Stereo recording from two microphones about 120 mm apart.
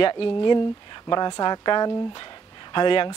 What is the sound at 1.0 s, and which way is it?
Speech, 35° left (ahead or behind).